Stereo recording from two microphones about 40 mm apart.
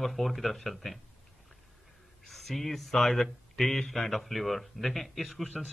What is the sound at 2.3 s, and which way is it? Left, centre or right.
A man's voice, centre.